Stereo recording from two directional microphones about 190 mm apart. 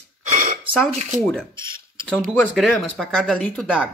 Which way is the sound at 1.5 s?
25° right (ahead or behind).